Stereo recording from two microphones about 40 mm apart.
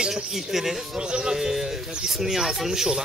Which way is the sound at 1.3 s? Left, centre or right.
Centre.